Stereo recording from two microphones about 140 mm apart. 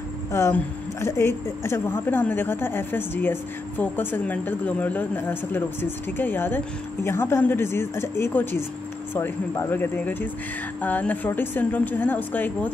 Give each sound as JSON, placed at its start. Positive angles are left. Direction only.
{"t": 0.3, "sound": "speech", "side_deg": 20}